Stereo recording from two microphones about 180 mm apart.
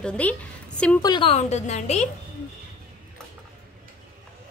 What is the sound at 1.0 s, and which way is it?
A woman's voice, 30° left (ahead or behind).